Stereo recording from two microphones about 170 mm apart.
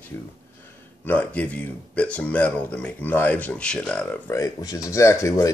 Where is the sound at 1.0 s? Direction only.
10° left (ahead or behind).